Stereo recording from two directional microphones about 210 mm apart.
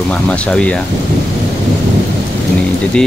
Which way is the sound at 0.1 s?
5° left (ahead or behind).